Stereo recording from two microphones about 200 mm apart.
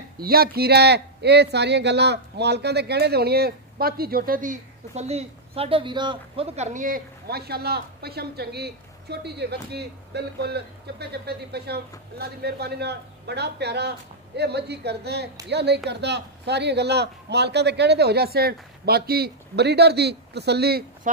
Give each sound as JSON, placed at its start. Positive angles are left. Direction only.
{"t": 0.2, "sound": "a man's voice", "side_deg": -50}